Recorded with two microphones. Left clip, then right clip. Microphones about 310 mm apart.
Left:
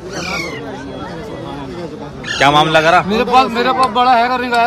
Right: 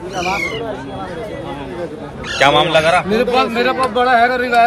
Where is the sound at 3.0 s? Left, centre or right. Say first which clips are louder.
Left 3 dB; left.